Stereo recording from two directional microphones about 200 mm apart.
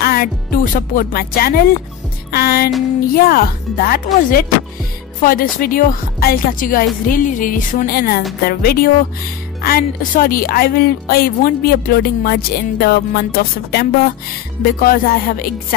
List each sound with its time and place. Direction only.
0.0 s music: 50° left (ahead or behind)
0.7 s speech: 45° left (ahead or behind)